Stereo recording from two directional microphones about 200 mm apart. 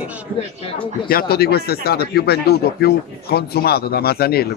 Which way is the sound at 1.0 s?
50° left (ahead or behind).